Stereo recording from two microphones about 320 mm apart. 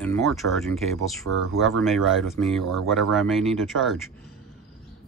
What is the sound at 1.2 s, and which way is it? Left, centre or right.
Speech, right.